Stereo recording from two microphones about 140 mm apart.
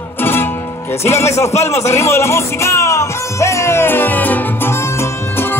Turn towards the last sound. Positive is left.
turn(degrees=15)  # may be behind; listen again after turning